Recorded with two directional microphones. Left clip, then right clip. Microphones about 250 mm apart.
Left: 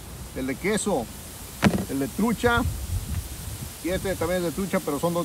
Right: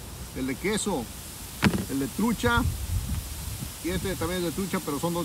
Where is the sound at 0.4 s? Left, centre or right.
Centre.